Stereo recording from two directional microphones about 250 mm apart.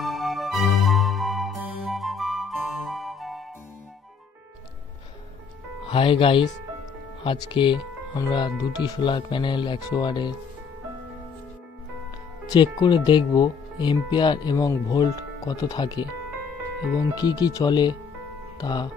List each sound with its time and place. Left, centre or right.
0.0 s music: centre
5.9 s speech: left
12.8 s speech: centre
17.1 s speech: centre